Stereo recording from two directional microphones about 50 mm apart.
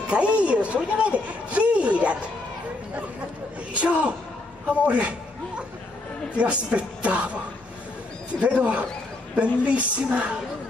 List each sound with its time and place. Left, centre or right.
0.1 s a man's voice: right
3.7 s a woman's voice: right
6.3 s a woman's voice: right